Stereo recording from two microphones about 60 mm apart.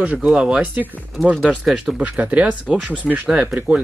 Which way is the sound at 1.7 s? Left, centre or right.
Centre.